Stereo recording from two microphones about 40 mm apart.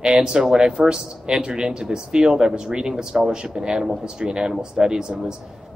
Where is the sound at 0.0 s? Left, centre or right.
Right.